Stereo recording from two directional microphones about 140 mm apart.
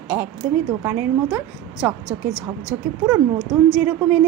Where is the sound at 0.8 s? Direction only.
15° right (ahead or behind).